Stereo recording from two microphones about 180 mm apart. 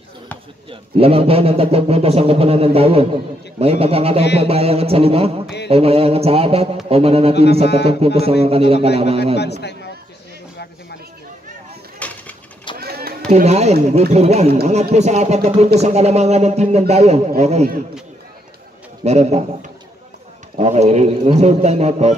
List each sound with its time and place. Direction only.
0.7 s speech: 30° right (ahead or behind)
9.4 s a man's voice: 70° left (ahead or behind)
12.0 s bird: 10° left (ahead or behind)
12.7 s a sound: 60° right (ahead or behind)
13.3 s speech: 40° right (ahead or behind)
19.0 s speech: 35° right (ahead or behind)
20.5 s speech: 40° right (ahead or behind)